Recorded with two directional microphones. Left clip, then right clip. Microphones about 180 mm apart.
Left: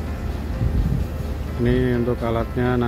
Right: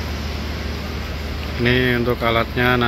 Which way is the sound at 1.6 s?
15° left (ahead or behind).